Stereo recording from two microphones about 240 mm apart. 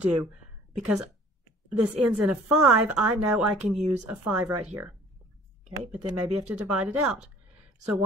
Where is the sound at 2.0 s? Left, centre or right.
Centre.